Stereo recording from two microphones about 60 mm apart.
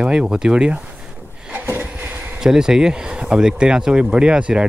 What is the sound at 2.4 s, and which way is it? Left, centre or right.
Speech, centre.